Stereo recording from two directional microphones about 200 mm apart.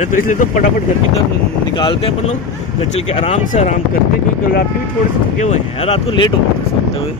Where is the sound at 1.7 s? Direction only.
25° left (ahead or behind).